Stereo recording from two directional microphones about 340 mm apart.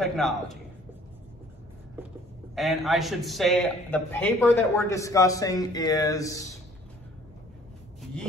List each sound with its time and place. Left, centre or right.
0.0 s a man's voice: centre
2.0 s a sound: centre
2.5 s a man's voice: centre